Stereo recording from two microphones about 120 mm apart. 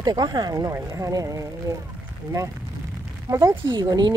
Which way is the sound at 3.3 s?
25° right (ahead or behind).